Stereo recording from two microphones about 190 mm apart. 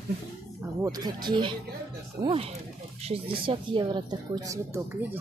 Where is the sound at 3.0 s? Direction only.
30° right (ahead or behind).